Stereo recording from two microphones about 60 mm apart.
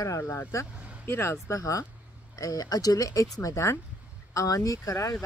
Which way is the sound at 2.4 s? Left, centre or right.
Left.